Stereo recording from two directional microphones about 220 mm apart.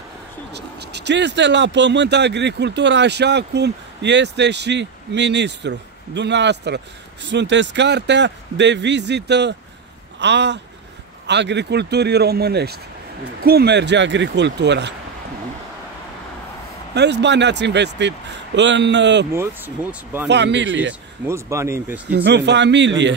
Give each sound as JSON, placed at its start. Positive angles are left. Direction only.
{"t": 0.5, "sound": "speech", "side_deg": -50}
{"t": 16.9, "sound": "speech", "side_deg": -50}
{"t": 19.3, "sound": "speech", "side_deg": -10}
{"t": 20.2, "sound": "speech", "side_deg": -50}
{"t": 21.3, "sound": "speech", "side_deg": -10}
{"t": 22.1, "sound": "speech", "side_deg": -50}